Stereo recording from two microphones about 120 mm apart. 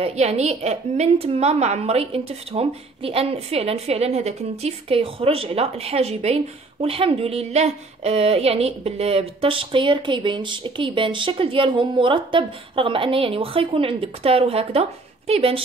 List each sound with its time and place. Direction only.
0.0 s a woman's voice: 60° right (ahead or behind)